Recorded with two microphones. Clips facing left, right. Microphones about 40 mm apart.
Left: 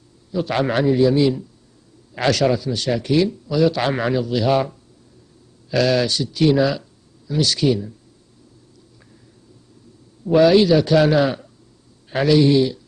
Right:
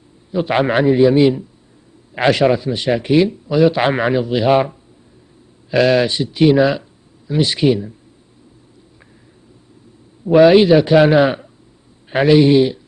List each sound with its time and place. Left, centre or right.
0.3 s a man's voice: right
10.2 s a man's voice: right